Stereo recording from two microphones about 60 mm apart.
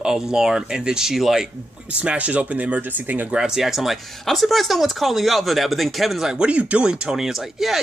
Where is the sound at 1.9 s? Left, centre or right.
Right.